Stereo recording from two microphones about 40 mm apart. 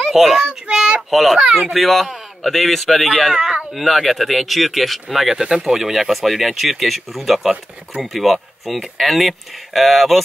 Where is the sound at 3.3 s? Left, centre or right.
Centre.